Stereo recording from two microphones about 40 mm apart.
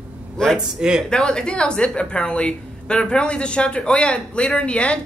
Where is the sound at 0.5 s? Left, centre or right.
Centre.